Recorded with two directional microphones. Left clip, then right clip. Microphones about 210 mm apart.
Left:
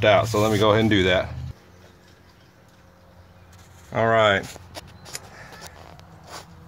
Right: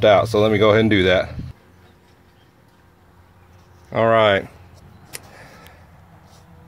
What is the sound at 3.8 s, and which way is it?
Speech, 20° right (ahead or behind).